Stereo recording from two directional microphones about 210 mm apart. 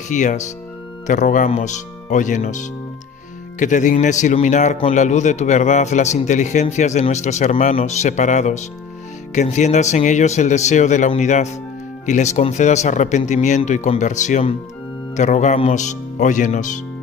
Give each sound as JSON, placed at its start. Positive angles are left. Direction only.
{"t": 0.1, "sound": "a man's voice", "side_deg": 35}